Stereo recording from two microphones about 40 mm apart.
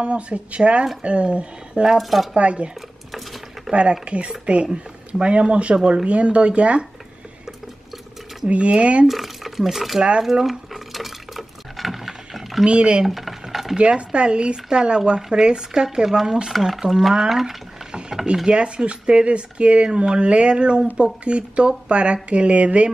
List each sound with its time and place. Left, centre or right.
0.0 s speech: right
2.0 s speech: centre
2.3 s speech: right
3.1 s patter: centre
3.7 s speech: right
8.5 s speech: right
9.0 s speech: centre
10.4 s dishes: centre
12.6 s speech: right
13.0 s stir: centre
13.7 s speech: right
17.3 s speech: centre
18.2 s speech: right